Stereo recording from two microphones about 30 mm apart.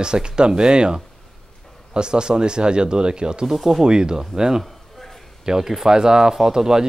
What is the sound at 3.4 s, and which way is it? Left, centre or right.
Speech, centre.